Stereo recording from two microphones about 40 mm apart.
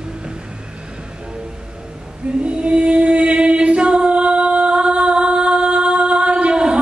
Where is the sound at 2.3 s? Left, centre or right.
Right.